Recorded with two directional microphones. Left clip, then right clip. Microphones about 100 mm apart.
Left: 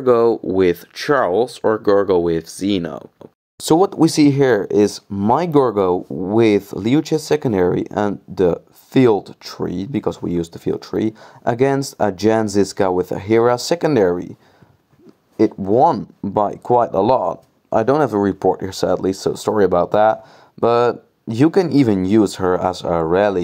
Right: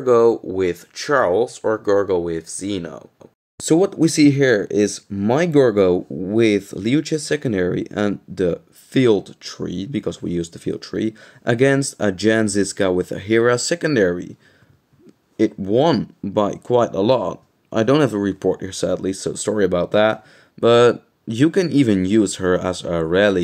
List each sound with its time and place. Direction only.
0.0 s speech: 40° left (ahead or behind)
3.6 s speech: 60° left (ahead or behind)
4.0 s speech: 40° left (ahead or behind)
15.3 s speech: 30° left (ahead or behind)